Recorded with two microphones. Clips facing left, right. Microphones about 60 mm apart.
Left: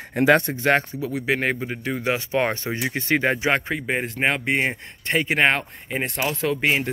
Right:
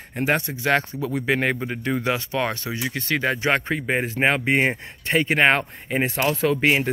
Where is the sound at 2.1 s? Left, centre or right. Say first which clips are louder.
Left 5 dB; left.